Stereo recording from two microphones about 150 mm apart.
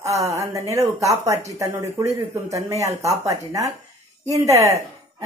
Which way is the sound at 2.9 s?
45° right (ahead or behind).